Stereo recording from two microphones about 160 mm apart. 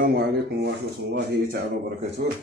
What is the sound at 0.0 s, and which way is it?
Speech, 75° right (ahead or behind).